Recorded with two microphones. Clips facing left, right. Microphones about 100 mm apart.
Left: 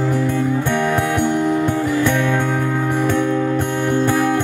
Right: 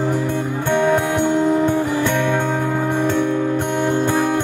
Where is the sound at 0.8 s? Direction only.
20° right (ahead or behind).